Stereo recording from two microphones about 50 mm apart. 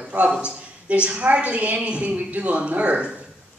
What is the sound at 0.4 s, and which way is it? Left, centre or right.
A woman's voice, right.